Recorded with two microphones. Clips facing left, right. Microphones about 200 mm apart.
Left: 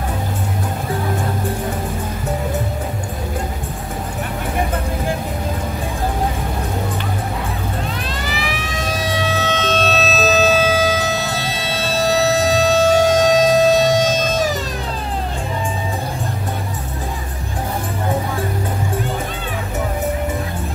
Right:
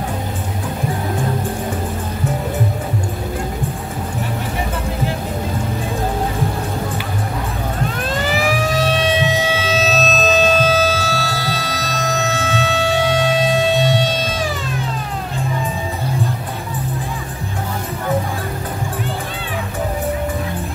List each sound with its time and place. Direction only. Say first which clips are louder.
8.3 s vehicle: right 7 dB; 45° right (ahead or behind)
8.8 s siren: even; 25° right (ahead or behind); by 14.6 s 45° left (ahead or behind)